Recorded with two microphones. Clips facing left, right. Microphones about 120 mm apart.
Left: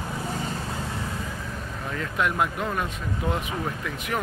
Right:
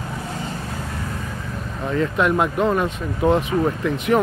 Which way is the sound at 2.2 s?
90° right.